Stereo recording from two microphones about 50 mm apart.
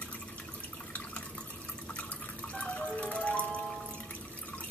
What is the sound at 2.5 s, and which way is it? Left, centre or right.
Music, left.